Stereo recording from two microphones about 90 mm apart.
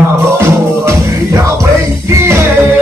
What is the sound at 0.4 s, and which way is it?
Music, 35° right (ahead or behind).